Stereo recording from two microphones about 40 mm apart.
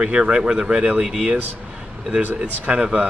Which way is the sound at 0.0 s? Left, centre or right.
Right.